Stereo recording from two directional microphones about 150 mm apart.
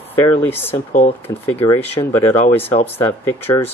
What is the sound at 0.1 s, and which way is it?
Speech, 15° left (ahead or behind).